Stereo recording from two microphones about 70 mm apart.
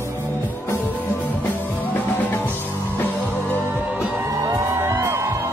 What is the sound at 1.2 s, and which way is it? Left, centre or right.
Music, left.